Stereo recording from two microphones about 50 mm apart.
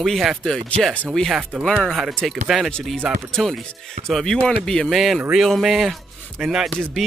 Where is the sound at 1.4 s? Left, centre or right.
Right.